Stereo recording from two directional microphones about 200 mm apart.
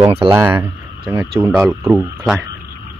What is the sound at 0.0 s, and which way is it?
Speech, 25° right (ahead or behind).